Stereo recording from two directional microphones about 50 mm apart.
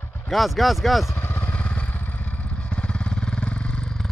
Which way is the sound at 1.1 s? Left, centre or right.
Left.